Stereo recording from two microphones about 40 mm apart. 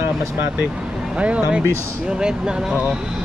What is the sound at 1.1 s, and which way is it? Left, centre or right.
Speech, right.